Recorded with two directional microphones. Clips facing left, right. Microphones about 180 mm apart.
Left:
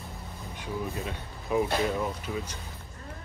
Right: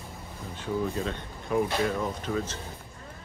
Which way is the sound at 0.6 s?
10° left (ahead or behind).